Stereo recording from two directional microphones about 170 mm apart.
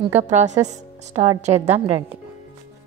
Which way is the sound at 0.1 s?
45° right (ahead or behind).